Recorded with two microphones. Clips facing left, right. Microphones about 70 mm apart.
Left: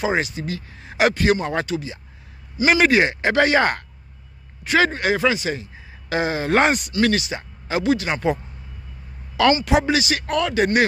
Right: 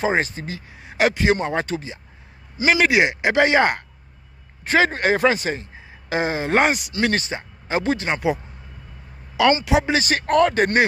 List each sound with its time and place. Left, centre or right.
0.0 s speech: right
0.8 s speech: centre
1.1 s speech: right
2.9 s speech: centre
4.6 s speech: right
6.0 s speech: right
6.6 s speech: centre
7.1 s speech: right
9.4 s speech: right
9.8 s speech: right